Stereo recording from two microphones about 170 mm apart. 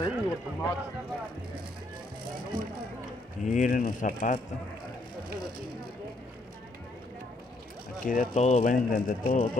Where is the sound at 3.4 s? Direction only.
50° left (ahead or behind).